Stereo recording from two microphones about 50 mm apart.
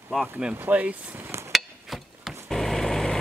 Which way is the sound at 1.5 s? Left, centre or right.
Centre.